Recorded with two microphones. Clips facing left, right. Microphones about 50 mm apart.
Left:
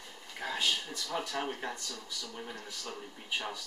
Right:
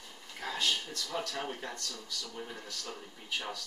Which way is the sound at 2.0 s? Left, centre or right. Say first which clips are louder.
Right 1 dB; centre.